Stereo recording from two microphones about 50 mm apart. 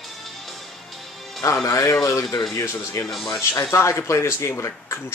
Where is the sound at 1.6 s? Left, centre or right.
Left.